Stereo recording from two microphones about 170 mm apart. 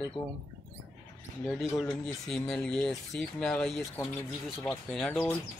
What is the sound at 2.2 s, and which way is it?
Speech, 5° left (ahead or behind).